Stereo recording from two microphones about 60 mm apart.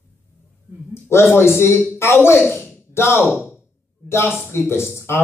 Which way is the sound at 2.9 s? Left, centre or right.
Left.